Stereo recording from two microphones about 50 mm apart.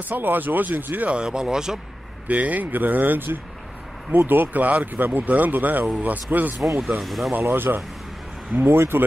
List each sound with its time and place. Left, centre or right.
0.1 s speech: right
1.1 s speech: centre
2.2 s speech: right
7.0 s speech: centre
7.4 s speech: right